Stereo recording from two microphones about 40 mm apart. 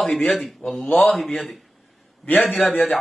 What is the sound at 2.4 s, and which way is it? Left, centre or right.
Speech, left.